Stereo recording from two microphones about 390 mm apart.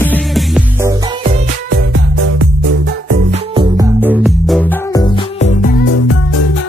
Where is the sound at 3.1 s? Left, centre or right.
Centre.